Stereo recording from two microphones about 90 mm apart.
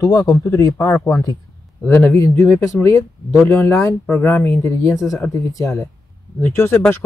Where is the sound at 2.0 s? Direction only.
25° left (ahead or behind).